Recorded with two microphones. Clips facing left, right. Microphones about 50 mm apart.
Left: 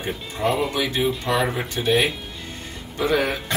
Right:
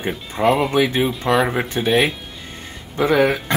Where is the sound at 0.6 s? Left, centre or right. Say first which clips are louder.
Right 5 dB; right.